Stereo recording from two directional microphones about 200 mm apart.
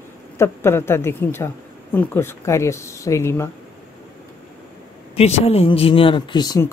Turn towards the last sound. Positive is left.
turn(degrees=15)  # may be behind; listen again after turning